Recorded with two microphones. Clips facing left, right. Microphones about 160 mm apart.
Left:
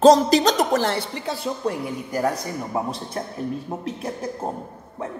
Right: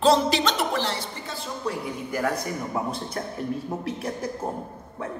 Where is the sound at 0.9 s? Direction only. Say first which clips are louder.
Left 6 dB; 65° left (ahead or behind).